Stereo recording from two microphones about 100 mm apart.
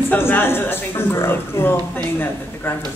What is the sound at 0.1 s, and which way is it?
A woman's voice, 20° left (ahead or behind).